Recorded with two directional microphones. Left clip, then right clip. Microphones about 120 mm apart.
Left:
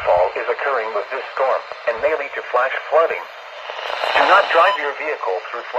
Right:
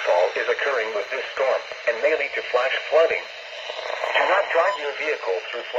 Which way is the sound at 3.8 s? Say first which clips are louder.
Left 5 dB; 45° left (ahead or behind).